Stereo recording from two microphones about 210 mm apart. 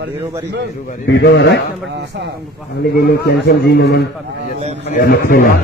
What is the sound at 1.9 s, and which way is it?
Speech, 55° right (ahead or behind).